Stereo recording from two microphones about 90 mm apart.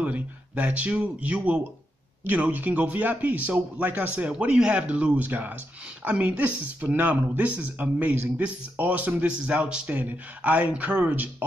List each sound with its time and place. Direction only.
0.0 s speech: 15° right (ahead or behind)